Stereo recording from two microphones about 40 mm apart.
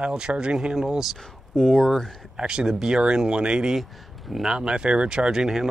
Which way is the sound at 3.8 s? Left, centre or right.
Centre.